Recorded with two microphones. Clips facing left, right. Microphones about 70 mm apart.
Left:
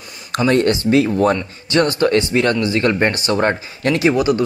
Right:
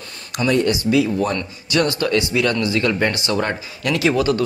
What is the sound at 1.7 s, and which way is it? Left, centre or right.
A man's voice, left.